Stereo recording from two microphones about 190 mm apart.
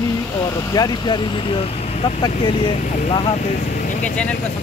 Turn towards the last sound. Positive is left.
turn(degrees=5)  # may be behind; listen again after turning